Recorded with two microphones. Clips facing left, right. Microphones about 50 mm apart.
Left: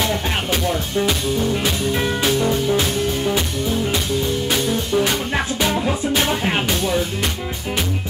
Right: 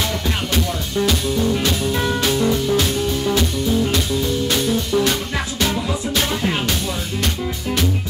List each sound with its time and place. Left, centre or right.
0.9 s music: centre
4.5 s music: centre